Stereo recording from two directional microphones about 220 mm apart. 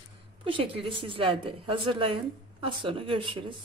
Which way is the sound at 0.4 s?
25° right (ahead or behind).